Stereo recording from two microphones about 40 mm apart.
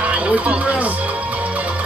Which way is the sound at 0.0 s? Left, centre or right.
Right.